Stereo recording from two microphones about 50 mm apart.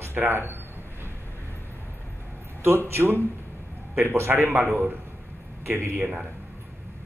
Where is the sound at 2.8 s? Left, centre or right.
Right.